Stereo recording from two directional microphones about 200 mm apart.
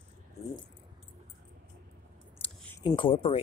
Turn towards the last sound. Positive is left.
turn(degrees=25)  # may be behind; listen again after turning